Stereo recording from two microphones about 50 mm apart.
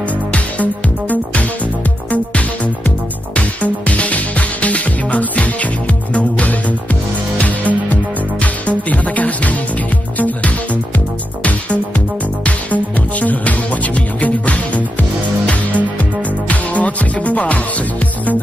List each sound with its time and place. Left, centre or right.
0.3 s music: left
12.4 s music: left
16.4 s music: left